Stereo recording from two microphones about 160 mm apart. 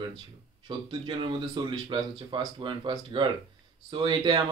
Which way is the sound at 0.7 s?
30° right (ahead or behind).